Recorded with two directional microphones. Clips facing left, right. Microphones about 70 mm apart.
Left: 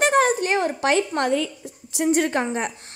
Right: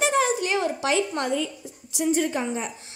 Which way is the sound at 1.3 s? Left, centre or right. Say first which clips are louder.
Left 3 dB; left.